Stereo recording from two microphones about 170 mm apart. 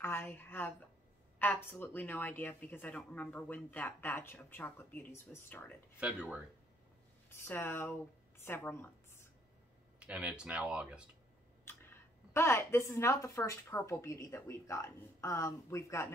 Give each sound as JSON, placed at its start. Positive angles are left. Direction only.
{"t": 0.0, "sound": "speech", "side_deg": 10}
{"t": 5.9, "sound": "speech", "side_deg": -5}
{"t": 7.2, "sound": "speech", "side_deg": 15}
{"t": 9.9, "sound": "speech", "side_deg": -5}
{"t": 11.6, "sound": "speech", "side_deg": 15}